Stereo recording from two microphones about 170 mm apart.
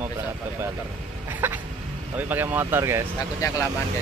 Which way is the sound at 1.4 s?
10° right (ahead or behind).